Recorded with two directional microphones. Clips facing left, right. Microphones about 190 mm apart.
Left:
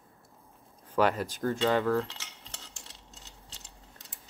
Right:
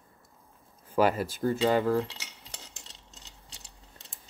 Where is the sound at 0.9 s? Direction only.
5° right (ahead or behind).